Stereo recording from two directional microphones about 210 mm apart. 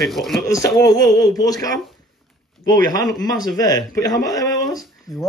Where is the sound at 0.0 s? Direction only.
Centre (ahead or behind).